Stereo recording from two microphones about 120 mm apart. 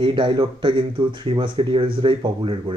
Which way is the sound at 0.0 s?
40° right (ahead or behind).